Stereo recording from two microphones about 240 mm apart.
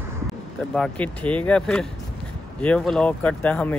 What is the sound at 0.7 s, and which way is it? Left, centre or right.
Speech, centre.